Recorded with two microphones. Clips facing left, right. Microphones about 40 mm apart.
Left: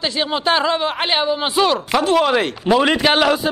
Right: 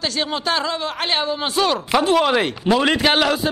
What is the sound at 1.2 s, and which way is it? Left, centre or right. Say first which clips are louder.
Speech: left 4 dB; centre.